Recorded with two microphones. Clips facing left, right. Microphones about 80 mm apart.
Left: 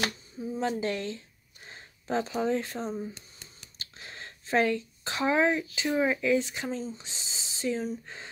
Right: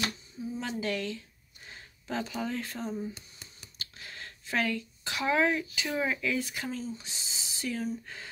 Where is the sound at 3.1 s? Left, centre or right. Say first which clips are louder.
Even; centre.